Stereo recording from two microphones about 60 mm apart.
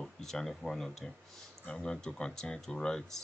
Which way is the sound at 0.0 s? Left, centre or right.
Centre.